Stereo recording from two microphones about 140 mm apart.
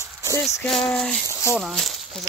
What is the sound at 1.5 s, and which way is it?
Speech, centre (ahead or behind).